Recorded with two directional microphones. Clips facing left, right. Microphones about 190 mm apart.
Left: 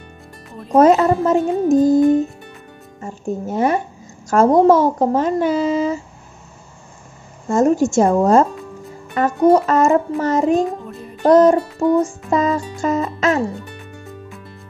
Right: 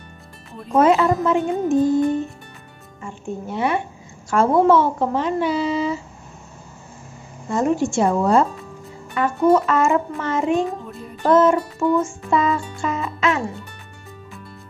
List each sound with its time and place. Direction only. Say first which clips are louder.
0.7 s speech: left 4 dB; 40° left (ahead or behind)
7.4 s speech: left 5 dB; 45° left (ahead or behind)
11.2 s music: left 4 dB; 40° left (ahead or behind)